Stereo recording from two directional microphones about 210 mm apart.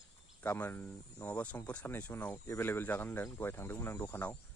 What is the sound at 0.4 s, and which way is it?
Speech, 10° left (ahead or behind).